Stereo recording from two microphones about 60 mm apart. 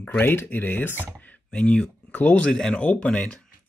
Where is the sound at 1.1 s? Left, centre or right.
Left.